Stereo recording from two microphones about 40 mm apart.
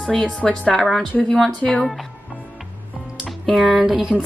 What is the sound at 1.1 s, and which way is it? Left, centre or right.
Speech, left.